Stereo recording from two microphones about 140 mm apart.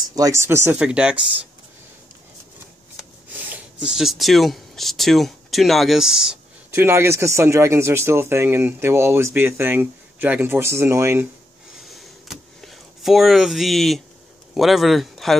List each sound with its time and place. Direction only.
0.1 s speech: 20° right (ahead or behind)
0.7 s speech: 5° right (ahead or behind)
3.0 s speech: 10° right (ahead or behind)
6.7 s speech: 15° right (ahead or behind)
11.9 s a sound: centre (ahead or behind)
14.5 s speech: centre (ahead or behind)